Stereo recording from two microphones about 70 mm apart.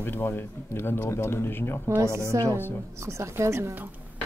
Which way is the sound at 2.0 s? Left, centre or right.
Right.